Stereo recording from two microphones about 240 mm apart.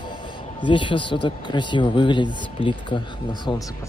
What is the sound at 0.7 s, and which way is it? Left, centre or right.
Speech, left.